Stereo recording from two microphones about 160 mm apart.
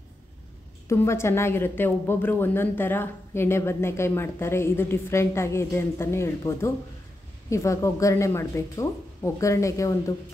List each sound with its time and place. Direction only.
0.8 s a woman's voice: 15° left (ahead or behind)